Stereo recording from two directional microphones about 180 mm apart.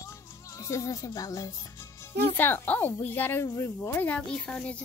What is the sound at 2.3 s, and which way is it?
Speech, 10° left (ahead or behind).